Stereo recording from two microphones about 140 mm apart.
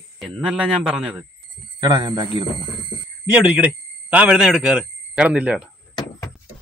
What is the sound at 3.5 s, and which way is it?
Speech, 10° right (ahead or behind).